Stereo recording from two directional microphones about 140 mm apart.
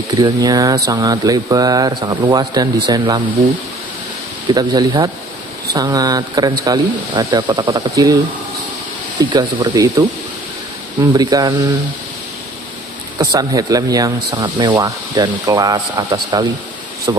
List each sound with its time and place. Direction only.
0.1 s speech: 30° right (ahead or behind)
4.6 s speech: 25° right (ahead or behind)
9.2 s speech: 30° right (ahead or behind)
13.2 s speech: 25° right (ahead or behind)